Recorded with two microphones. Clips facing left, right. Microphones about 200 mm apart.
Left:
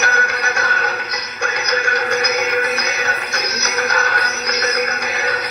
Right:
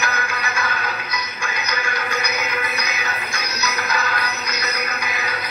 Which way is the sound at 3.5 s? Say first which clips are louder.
Left 3 dB; 70° left (ahead or behind).